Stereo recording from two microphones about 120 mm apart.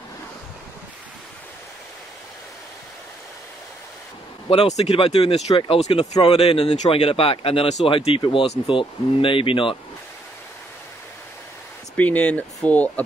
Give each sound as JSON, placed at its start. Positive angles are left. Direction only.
{"t": 4.5, "sound": "speech", "side_deg": 60}
{"t": 12.0, "sound": "speech", "side_deg": 10}